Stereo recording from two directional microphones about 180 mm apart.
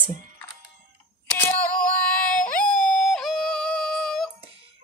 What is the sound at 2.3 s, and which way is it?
Yodeling, 5° left (ahead or behind).